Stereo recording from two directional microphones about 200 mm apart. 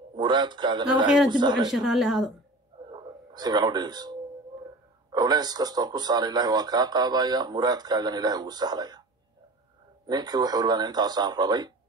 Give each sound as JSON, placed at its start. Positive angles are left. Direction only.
{"t": 0.1, "sound": "a man's voice", "side_deg": -20}
{"t": 1.0, "sound": "speech", "side_deg": 0}
{"t": 1.3, "sound": "a man's voice", "side_deg": -20}
{"t": 1.7, "sound": "speech", "side_deg": 0}
{"t": 2.9, "sound": "a sound", "side_deg": -20}
{"t": 5.1, "sound": "a man's voice", "side_deg": -20}
{"t": 10.0, "sound": "a man's voice", "side_deg": -20}